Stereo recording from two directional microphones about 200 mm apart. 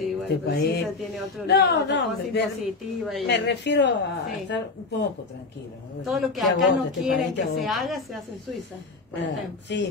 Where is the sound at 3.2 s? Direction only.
60° left (ahead or behind).